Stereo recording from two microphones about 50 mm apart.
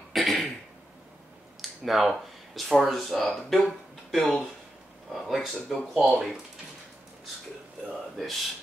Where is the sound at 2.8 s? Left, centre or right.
Centre.